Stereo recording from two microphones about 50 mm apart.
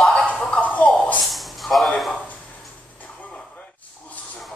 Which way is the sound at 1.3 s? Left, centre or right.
Centre.